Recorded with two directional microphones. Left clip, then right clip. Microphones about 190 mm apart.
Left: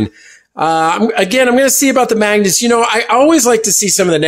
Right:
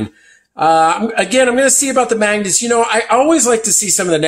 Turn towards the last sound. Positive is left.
turn(degrees=45)  # may be behind; listen again after turning